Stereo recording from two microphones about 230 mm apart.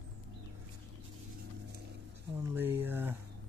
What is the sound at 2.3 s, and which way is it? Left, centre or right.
Speech, centre.